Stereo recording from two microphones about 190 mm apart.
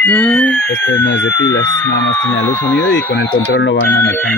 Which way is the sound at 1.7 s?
15° left (ahead or behind).